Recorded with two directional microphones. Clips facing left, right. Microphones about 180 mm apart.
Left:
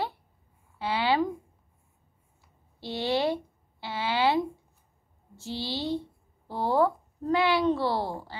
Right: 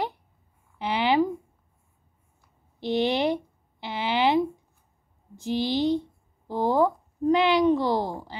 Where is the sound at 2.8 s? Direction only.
20° right (ahead or behind).